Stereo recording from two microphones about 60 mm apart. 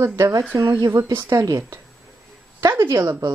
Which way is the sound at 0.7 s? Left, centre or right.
Right.